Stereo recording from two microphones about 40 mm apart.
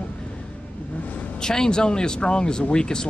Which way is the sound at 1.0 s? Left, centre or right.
Left.